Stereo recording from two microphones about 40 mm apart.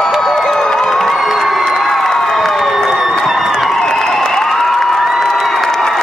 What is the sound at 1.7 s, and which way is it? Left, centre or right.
Cheering, centre.